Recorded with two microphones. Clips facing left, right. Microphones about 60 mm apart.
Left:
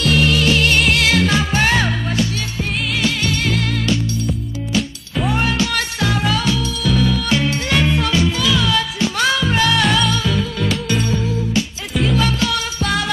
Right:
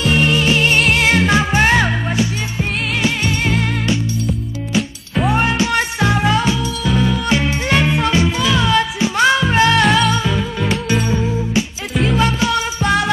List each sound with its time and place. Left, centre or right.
0.0 s music: right
5.3 s music: right
9.8 s music: centre
10.1 s music: right
12.1 s music: right